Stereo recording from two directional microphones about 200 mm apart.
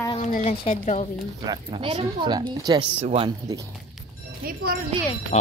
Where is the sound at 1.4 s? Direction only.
20° right (ahead or behind).